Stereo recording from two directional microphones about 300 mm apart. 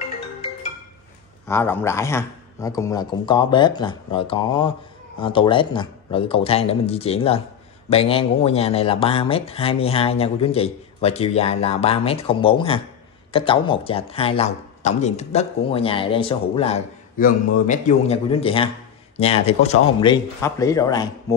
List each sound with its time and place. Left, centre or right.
1.5 s a man's voice: centre